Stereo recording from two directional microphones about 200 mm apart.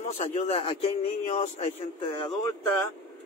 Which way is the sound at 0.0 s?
40° left (ahead or behind).